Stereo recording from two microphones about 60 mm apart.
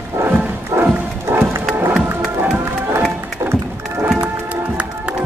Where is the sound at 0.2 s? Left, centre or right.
Right.